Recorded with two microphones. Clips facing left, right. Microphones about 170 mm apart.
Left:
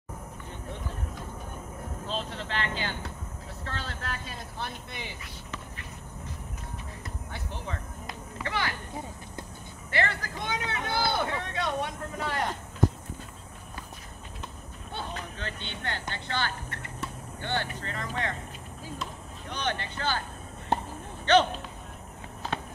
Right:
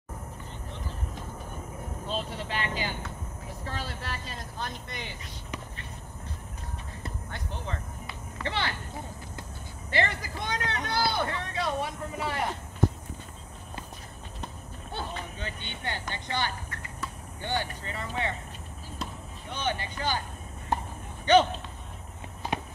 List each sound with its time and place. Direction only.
2.0 s speech: 10° right (ahead or behind)
7.2 s speech: 5° left (ahead or behind)
8.5 s speech: 25° right (ahead or behind)
9.8 s speech: 20° right (ahead or behind)
10.4 s speech: centre (ahead or behind)
15.3 s speech: 10° right (ahead or behind)
19.5 s speech: 10° right (ahead or behind)
21.3 s speech: 10° right (ahead or behind)